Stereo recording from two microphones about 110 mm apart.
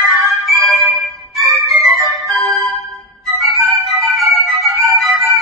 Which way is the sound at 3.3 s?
Centre (ahead or behind).